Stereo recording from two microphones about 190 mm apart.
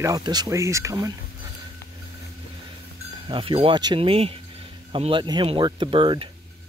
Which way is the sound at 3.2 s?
25° right (ahead or behind).